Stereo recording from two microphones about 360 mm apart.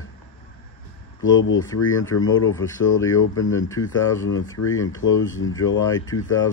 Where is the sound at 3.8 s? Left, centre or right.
Left.